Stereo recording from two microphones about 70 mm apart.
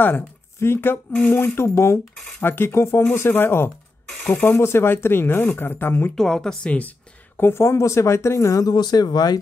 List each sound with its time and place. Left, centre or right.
0.0 s speech: left
1.1 s speech: centre
1.4 s speech: left
4.1 s a sound: centre
4.4 s speech: left
6.1 s speech: centre
7.3 s speech: left
8.6 s speech: left